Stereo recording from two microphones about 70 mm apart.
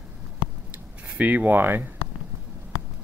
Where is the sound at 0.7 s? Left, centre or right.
Right.